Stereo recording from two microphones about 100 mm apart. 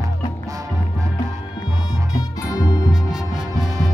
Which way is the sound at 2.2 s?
40° left (ahead or behind).